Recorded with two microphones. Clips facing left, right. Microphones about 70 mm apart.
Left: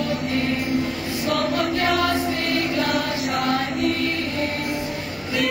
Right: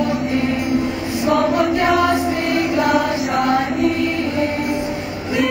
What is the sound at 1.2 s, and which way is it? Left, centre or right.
Chant, right.